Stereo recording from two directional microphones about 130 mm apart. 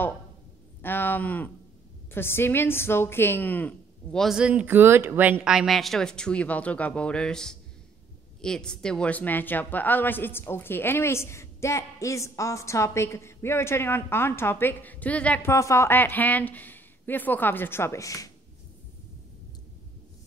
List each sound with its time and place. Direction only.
0.8 s a woman's voice: 15° left (ahead or behind)
15.5 s a woman's voice: 20° left (ahead or behind)